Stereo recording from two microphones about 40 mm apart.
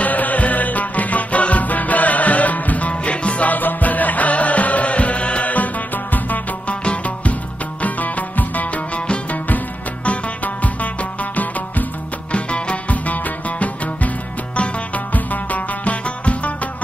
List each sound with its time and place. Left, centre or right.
0.0 s music: left
3.5 s music: left
6.7 s music: left
7.8 s music: left
10.0 s music: left
12.3 s music: left
12.9 s music: left
15.1 s music: left